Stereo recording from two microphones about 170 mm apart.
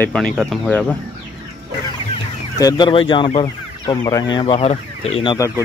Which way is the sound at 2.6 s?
30° left (ahead or behind).